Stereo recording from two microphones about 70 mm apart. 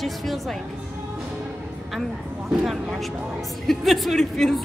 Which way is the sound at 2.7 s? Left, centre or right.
Centre.